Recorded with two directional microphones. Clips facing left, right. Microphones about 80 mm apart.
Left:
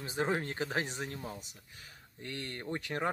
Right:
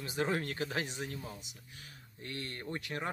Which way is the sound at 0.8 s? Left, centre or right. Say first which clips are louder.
Left 1 dB; left.